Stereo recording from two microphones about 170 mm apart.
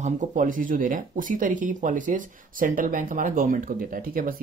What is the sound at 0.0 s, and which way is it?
Speech, 50° right (ahead or behind).